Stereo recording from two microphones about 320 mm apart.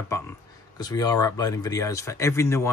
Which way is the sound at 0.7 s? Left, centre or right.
Centre.